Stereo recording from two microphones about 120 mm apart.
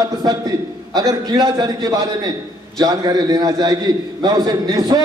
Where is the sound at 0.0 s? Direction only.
35° right (ahead or behind).